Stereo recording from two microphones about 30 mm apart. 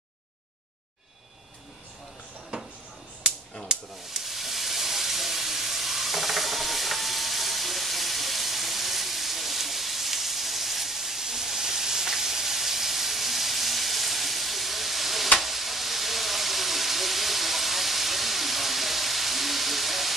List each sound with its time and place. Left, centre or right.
2.5 s drawer open or close: right
4.0 s steam: centre
15.3 s sizzle: centre